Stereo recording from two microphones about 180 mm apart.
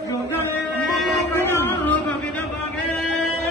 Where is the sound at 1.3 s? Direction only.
15° left (ahead or behind).